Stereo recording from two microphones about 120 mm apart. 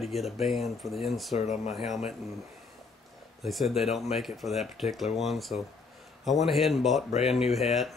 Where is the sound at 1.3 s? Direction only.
70° left (ahead or behind).